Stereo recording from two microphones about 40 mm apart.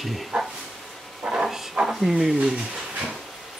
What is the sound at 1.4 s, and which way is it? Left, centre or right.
Stir, centre.